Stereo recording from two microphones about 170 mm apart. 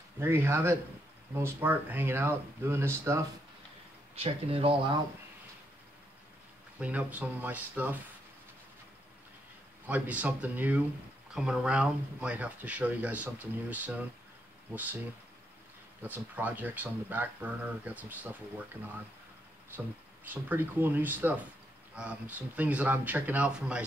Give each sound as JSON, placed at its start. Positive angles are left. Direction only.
{"t": 0.2, "sound": "speech", "side_deg": -15}
{"t": 4.1, "sound": "speech", "side_deg": -35}
{"t": 6.8, "sound": "speech", "side_deg": -10}
{"t": 9.8, "sound": "speech", "side_deg": -10}
{"t": 16.0, "sound": "speech", "side_deg": -10}
{"t": 20.2, "sound": "speech", "side_deg": -10}